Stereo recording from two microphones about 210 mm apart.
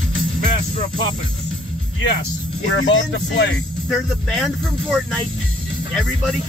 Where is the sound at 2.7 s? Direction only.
60° left (ahead or behind).